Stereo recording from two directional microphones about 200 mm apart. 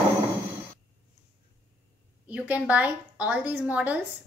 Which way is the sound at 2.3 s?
5° right (ahead or behind).